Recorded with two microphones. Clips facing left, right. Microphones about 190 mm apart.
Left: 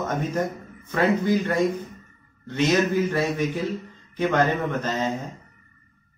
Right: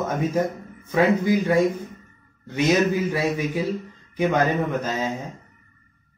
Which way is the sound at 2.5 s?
15° right (ahead or behind).